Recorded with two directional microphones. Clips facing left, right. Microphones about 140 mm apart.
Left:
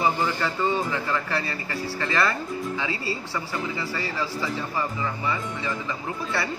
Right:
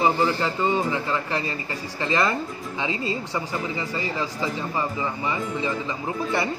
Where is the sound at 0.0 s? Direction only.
15° right (ahead or behind).